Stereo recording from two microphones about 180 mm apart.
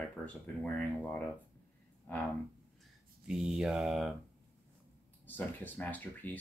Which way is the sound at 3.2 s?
5° right (ahead or behind).